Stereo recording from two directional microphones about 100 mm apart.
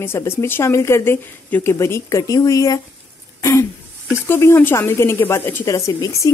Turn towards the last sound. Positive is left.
turn(degrees=35)  # may be behind; listen again after turning